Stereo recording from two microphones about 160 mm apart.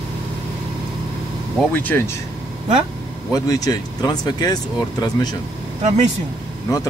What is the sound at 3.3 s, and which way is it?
Speech, 20° left (ahead or behind).